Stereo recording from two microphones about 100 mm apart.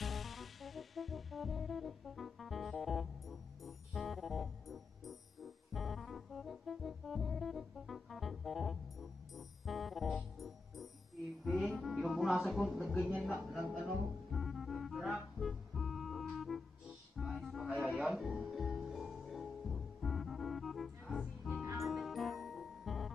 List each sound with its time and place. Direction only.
0.0 s music: centre (ahead or behind)
12.8 s a sound: centre (ahead or behind)
13.3 s music: centre (ahead or behind)
17.6 s music: 10° right (ahead or behind)